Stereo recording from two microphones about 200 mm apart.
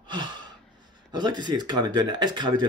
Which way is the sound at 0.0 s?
20° right (ahead or behind).